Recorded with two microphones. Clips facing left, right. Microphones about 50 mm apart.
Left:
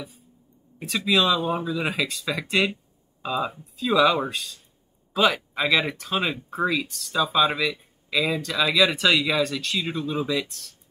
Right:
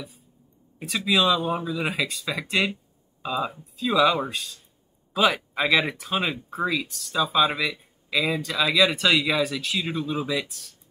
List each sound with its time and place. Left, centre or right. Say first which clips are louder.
0.7 s speech: left 1 dB; centre
1.4 s speech: left 1 dB; left
1.9 s speech: left 1 dB; centre
5.1 s speech: even; centre
6.5 s speech: left 2 dB; centre
7.4 s speech: left 1 dB; centre